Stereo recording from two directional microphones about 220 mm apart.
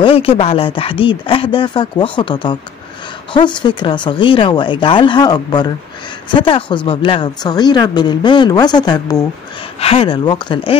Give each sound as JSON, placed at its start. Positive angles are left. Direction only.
{"t": 0.0, "sound": "speech", "side_deg": 25}